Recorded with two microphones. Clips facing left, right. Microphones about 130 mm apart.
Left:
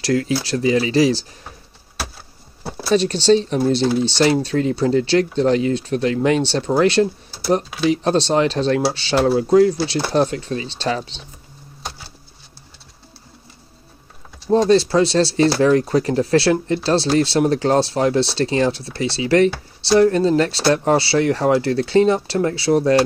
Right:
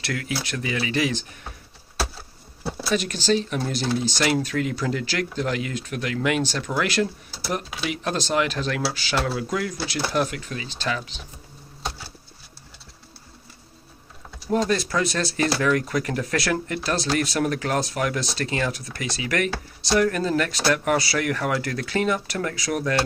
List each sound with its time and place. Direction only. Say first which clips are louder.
0.0 s speech: left 10 dB; 30° left (ahead or behind)
2.9 s speech: left 8 dB; 30° left (ahead or behind)
14.5 s speech: left 8 dB; 30° left (ahead or behind)